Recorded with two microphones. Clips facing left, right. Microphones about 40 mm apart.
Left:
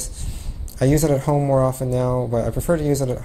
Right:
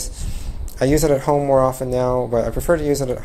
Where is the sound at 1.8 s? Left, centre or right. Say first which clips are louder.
Right 2 dB; right.